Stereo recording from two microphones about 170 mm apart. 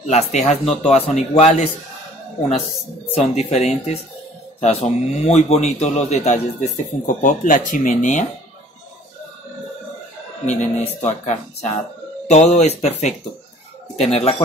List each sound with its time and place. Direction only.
0.0 s speech: 40° left (ahead or behind)
3.1 s a man's voice: 40° left (ahead or behind)
10.4 s a man's voice: 35° left (ahead or behind)